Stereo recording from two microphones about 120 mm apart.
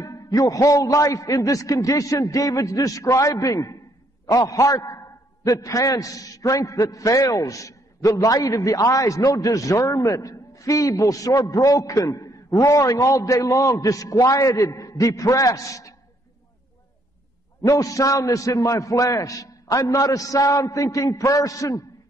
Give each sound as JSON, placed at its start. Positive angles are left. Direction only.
{"t": 0.0, "sound": "a man's voice", "side_deg": 30}
{"t": 17.6, "sound": "a man's voice", "side_deg": 30}